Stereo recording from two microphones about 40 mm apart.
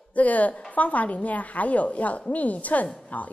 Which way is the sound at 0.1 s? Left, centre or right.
Left.